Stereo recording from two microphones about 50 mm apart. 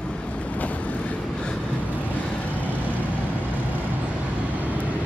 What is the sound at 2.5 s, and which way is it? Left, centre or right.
Vehicle, left.